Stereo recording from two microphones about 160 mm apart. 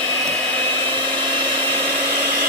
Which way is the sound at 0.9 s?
30° right (ahead or behind).